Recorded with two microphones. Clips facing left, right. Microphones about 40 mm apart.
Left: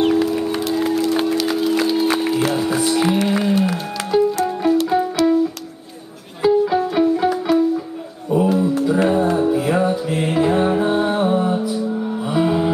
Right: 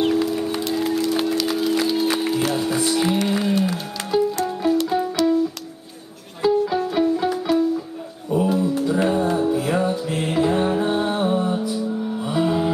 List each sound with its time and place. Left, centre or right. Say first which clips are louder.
0.0 s music: left 3 dB; centre
6.4 s music: left 4 dB; centre